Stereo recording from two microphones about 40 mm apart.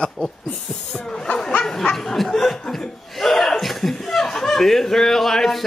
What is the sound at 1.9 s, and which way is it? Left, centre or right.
Speech, centre.